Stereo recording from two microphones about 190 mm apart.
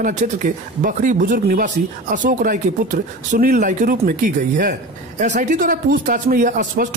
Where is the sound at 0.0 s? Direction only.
45° right (ahead or behind).